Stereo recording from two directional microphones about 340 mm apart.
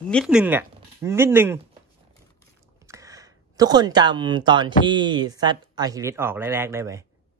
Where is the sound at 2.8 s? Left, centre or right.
Centre.